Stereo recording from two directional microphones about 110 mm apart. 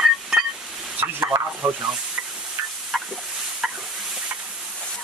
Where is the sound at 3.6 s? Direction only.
5° right (ahead or behind).